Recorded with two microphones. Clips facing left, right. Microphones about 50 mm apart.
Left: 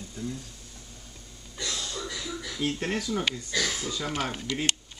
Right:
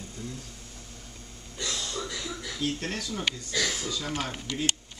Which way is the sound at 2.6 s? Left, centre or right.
Left.